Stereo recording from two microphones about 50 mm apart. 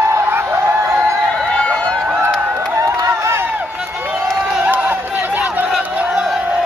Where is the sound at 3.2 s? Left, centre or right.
Right.